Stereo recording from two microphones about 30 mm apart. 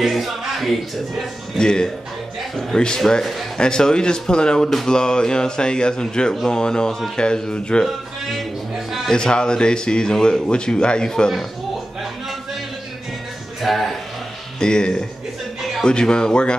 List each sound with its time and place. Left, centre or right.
0.0 s speech: centre
1.6 s speech: left
8.7 s a sound: centre
9.1 s speech: left
11.1 s speech: centre
13.6 s speech: centre
14.6 s speech: left